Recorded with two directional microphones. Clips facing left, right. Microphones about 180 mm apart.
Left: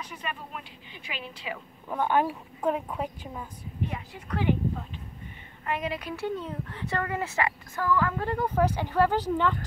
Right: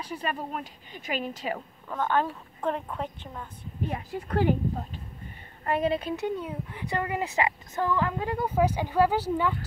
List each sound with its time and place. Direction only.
0.0 s a woman's voice: 35° right (ahead or behind)
1.9 s speech: 15° left (ahead or behind)
3.9 s a woman's voice: 45° right (ahead or behind); by 9.6 s 10° right (ahead or behind)